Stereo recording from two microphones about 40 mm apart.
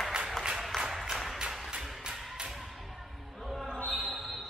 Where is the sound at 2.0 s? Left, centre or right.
Right.